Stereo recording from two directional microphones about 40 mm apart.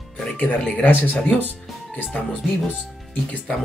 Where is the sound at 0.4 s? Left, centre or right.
Left.